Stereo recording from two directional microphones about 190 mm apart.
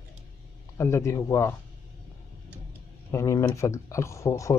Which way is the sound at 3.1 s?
15° left (ahead or behind).